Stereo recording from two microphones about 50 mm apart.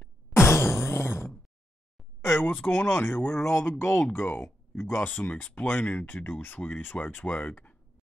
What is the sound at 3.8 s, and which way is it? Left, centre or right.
Speech, left.